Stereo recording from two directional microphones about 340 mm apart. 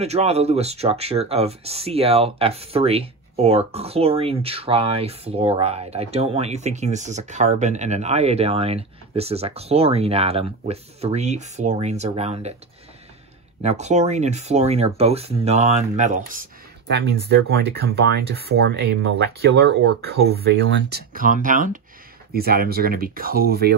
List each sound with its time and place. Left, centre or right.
0.0 s speech: centre
13.6 s speech: centre